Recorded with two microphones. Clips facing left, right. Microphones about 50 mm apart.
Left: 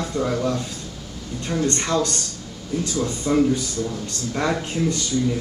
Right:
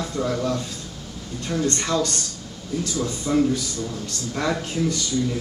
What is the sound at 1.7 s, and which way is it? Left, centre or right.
Speech, centre.